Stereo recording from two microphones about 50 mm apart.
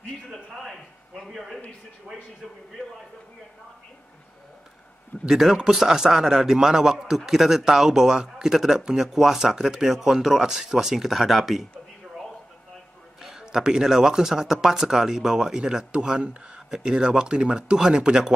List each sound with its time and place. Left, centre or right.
0.3 s a sound: centre
1.3 s speech: centre
5.2 s a man's voice: centre
13.2 s a man's voice: centre